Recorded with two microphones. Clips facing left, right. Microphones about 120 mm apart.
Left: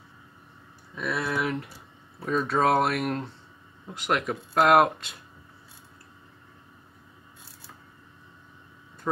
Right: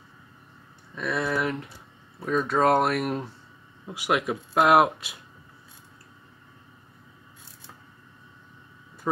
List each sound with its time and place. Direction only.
0.9 s speech: centre (ahead or behind)
9.1 s speech: 10° right (ahead or behind)